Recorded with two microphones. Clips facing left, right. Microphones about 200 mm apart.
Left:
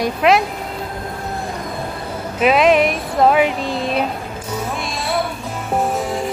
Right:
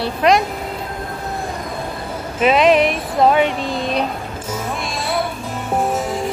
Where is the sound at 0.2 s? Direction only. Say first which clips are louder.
Even; 5° left (ahead or behind).